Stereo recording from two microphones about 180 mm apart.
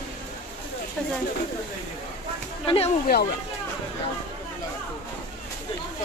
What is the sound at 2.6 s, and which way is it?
Speech, 30° left (ahead or behind).